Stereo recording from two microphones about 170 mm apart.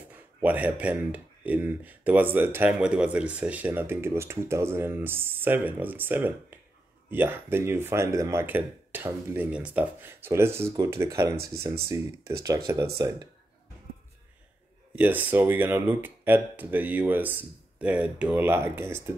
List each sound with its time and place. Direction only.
0.1 s speech: 10° right (ahead or behind)
12.4 s speech: 20° right (ahead or behind)
15.0 s speech: 10° right (ahead or behind)